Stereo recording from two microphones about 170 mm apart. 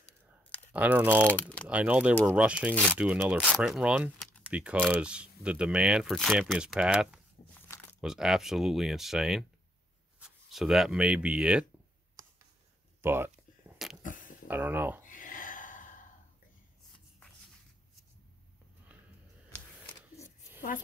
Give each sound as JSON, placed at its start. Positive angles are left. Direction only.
{"t": 0.7, "sound": "speech", "side_deg": -10}
{"t": 1.2, "sound": "speech", "side_deg": 10}
{"t": 1.7, "sound": "speech", "side_deg": -5}
{"t": 7.5, "sound": "crumpling", "side_deg": 15}
{"t": 8.0, "sound": "speech", "side_deg": -5}
{"t": 13.0, "sound": "speech", "side_deg": -15}
{"t": 13.7, "sound": "a sound", "side_deg": -10}
{"t": 14.0, "sound": "a sound", "side_deg": 50}
{"t": 14.5, "sound": "speech", "side_deg": -10}
{"t": 15.0, "sound": "a sound", "side_deg": 50}